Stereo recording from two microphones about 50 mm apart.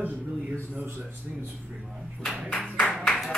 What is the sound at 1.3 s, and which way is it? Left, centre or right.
Speech, right.